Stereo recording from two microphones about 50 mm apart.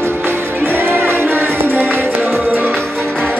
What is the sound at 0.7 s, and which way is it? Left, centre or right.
Music, right.